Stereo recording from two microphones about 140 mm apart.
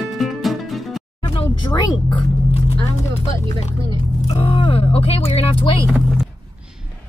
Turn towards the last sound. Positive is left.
turn(degrees=40)  # may be behind; listen again after turning